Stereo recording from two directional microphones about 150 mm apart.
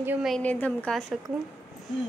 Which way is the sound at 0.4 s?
10° left (ahead or behind).